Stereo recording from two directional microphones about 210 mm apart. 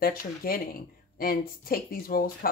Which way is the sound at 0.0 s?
45° left (ahead or behind).